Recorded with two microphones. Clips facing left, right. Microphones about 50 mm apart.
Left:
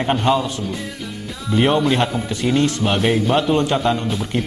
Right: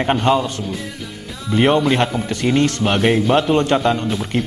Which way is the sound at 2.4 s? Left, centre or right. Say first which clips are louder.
Right 1 dB; centre.